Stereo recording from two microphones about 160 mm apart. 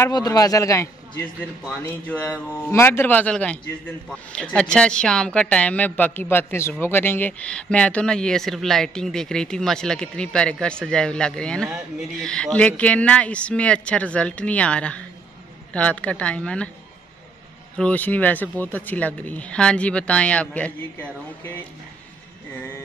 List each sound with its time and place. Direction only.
0.0 s a man's voice: 25° left (ahead or behind); by 16.7 s 5° left (ahead or behind)
17.7 s speech: 10° left (ahead or behind)